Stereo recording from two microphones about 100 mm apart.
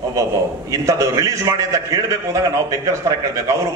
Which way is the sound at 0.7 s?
35° right (ahead or behind).